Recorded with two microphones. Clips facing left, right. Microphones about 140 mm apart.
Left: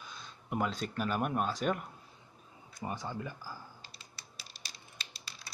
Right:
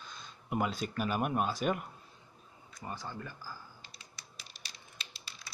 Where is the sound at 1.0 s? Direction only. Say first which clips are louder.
Even; 5° right (ahead or behind).